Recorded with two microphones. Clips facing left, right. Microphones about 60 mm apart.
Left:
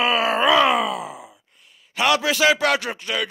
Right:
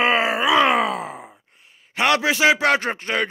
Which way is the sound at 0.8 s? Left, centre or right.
Right.